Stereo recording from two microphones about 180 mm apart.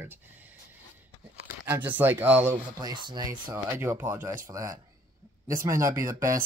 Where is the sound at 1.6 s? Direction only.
10° right (ahead or behind).